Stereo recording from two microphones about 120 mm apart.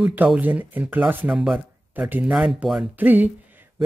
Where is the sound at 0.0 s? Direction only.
10° right (ahead or behind).